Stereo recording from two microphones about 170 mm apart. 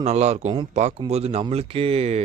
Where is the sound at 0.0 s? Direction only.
40° right (ahead or behind).